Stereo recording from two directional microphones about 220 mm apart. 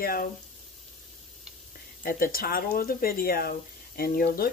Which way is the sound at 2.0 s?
40° left (ahead or behind).